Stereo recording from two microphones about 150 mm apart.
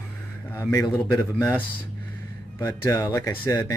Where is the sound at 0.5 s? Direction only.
15° left (ahead or behind).